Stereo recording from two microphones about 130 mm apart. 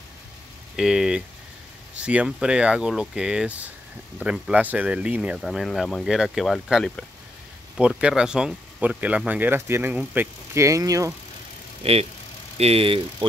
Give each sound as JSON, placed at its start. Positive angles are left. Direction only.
{"t": 0.7, "sound": "speech", "side_deg": -5}
{"t": 11.8, "sound": "speech", "side_deg": -50}